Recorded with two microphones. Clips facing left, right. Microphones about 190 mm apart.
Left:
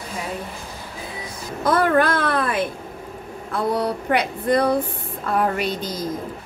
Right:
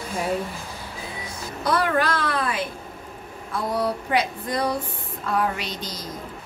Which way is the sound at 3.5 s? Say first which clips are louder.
Left 3 dB; 60° left (ahead or behind).